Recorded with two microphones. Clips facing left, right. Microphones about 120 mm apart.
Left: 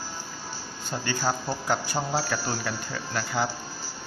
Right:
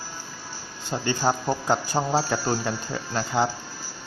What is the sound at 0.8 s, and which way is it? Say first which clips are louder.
Speech: right 4 dB; 20° right (ahead or behind).